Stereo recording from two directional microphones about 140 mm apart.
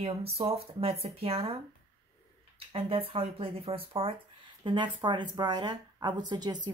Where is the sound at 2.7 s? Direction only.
45° right (ahead or behind).